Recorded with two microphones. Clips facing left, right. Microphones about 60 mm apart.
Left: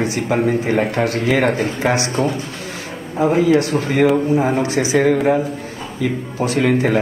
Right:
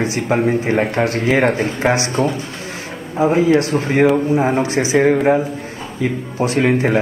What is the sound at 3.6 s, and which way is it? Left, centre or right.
Speech, right.